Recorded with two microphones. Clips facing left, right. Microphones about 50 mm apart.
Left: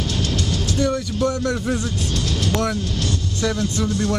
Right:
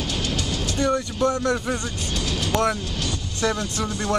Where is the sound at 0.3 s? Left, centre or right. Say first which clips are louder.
Left 3 dB; right.